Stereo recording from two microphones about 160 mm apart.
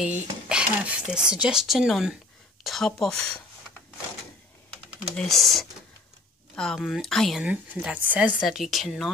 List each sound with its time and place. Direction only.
0.5 s speech: 5° right (ahead or behind)
5.1 s speech: 5° left (ahead or behind)